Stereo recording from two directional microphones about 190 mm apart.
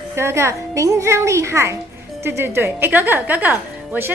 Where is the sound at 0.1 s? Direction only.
15° right (ahead or behind).